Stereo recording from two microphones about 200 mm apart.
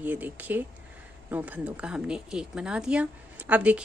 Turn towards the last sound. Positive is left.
turn(degrees=-5)  # may be behind; listen again after turning